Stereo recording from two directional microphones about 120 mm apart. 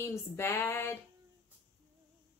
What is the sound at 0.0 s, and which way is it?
Speech, 25° left (ahead or behind).